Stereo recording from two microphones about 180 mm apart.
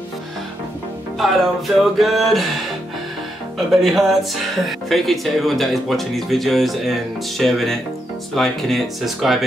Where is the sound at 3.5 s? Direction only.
Centre (ahead or behind).